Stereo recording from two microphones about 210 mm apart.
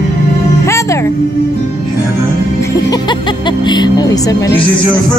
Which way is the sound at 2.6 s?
20° left (ahead or behind).